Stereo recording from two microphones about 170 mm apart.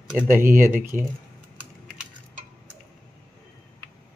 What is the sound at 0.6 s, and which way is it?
Speech, 55° right (ahead or behind).